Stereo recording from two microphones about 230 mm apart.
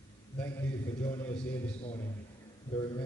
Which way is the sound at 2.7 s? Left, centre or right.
Centre.